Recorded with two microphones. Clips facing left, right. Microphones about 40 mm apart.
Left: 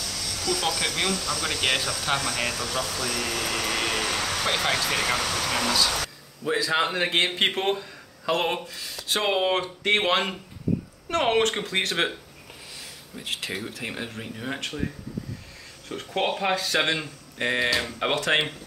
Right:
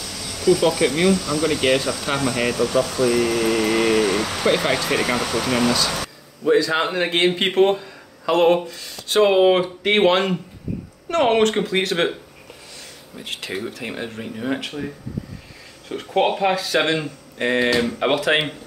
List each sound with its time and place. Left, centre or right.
0.0 s cricket: centre
0.6 s speech: centre
6.4 s speech: centre
13.2 s speech: centre
15.9 s speech: centre